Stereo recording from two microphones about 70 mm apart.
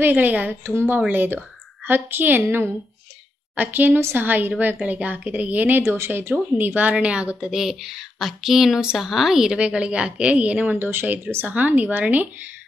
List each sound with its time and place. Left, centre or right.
0.0 s a woman's voice: right
10.9 s speech: right